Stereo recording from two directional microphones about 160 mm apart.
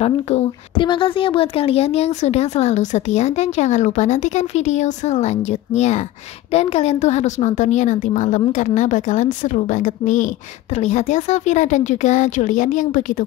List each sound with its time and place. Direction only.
0.0 s a woman's voice: 40° left (ahead or behind)